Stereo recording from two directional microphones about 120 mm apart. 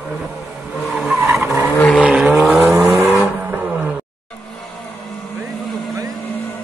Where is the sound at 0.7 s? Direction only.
Centre (ahead or behind).